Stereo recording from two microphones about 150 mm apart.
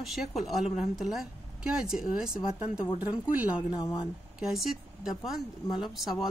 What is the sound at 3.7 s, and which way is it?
Speech, 30° left (ahead or behind).